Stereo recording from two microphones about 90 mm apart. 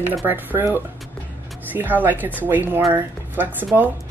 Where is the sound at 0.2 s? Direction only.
25° right (ahead or behind).